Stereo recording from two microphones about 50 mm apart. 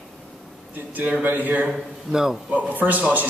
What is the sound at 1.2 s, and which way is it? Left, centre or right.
Speech, right.